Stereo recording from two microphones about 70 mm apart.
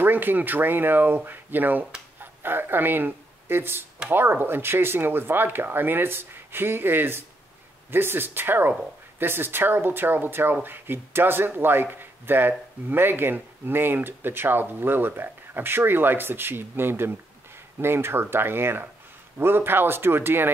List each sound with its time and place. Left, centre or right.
0.0 s speech: right